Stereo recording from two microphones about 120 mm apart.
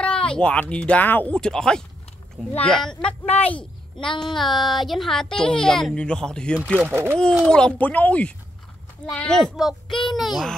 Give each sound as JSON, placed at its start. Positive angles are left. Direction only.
{"t": 0.0, "sound": "speech", "side_deg": 10}
{"t": 6.9, "sound": "speech", "side_deg": -20}
{"t": 7.4, "sound": "speech", "side_deg": 5}